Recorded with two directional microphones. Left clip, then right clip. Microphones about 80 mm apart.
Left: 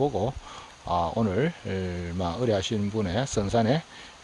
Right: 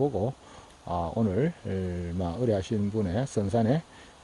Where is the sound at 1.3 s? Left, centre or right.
Right.